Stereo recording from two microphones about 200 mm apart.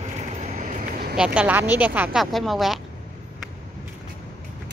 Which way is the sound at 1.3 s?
10° right (ahead or behind).